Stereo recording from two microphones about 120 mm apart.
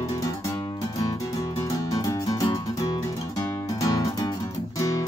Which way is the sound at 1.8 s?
30° left (ahead or behind).